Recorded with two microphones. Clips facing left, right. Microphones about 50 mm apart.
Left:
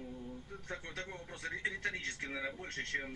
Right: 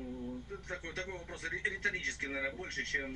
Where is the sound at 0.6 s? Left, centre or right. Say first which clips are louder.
Right 1 dB; right.